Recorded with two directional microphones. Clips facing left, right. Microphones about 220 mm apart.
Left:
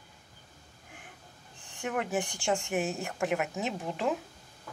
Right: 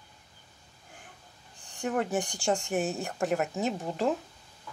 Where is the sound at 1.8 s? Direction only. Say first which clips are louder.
Right 3 dB; 35° right (ahead or behind).